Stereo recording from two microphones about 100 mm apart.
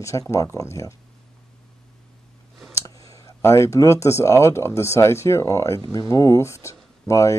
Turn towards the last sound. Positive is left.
turn(degrees=30)  # may be behind; listen again after turning